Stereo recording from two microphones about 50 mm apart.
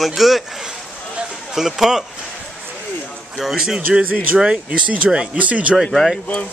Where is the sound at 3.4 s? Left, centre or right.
Centre; by 5.7 s right.